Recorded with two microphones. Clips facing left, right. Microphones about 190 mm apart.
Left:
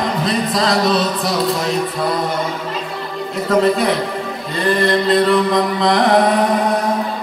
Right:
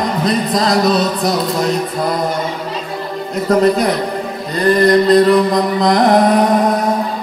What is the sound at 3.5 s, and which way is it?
Music, 40° right (ahead or behind).